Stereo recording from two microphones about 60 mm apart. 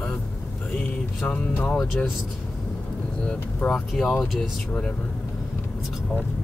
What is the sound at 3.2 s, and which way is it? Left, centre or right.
Speech, centre.